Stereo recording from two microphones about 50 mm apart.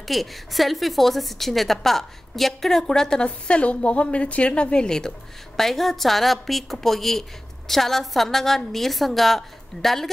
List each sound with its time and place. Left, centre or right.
0.0 s a woman's voice: centre
3.3 s a woman's voice: left; by 10.0 s centre